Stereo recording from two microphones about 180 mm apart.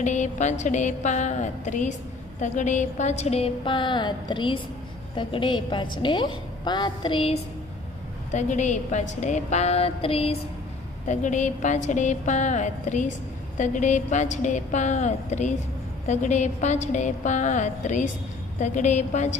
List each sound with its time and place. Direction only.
0.0 s a woman's voice: 40° left (ahead or behind)
8.3 s a woman's voice: 40° left (ahead or behind)
11.1 s a woman's voice: 45° left (ahead or behind)